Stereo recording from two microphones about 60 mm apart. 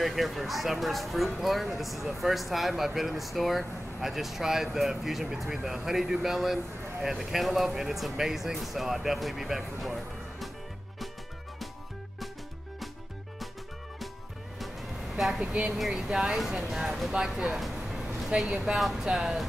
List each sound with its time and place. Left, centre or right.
0.0 s speech: centre
14.6 s music: centre
15.4 s speech: centre
15.7 s speech: centre
17.1 s music: centre
18.4 s speech: centre